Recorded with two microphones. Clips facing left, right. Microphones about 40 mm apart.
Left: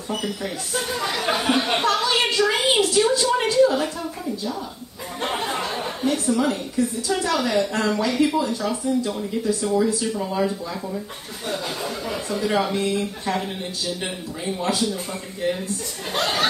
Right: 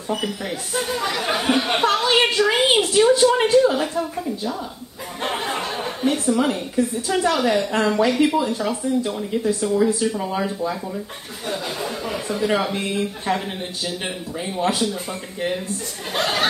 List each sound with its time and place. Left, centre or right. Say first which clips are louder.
0.9 s speech: even; centre
1.9 s a woman's voice: right 5 dB; right
5.2 s a sound: right 1 dB; centre
6.0 s a woman's voice: right 2 dB; right
12.1 s speech: right 2 dB; right
14.6 s speech: right 3 dB; right
16.1 s speech: right 1 dB; centre